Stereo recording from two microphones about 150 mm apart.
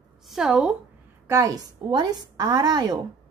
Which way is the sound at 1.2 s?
20° right (ahead or behind).